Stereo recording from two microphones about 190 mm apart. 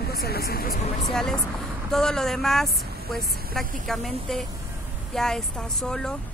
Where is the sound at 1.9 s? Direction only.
5° left (ahead or behind).